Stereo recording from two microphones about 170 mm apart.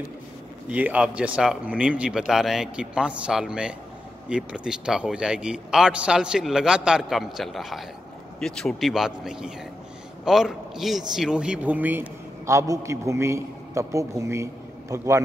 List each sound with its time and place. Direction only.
0.7 s a man's voice: 10° right (ahead or behind)